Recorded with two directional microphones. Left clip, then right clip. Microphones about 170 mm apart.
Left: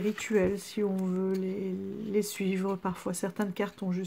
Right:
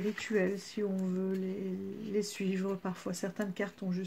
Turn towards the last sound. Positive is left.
turn(degrees=25)  # may be behind; listen again after turning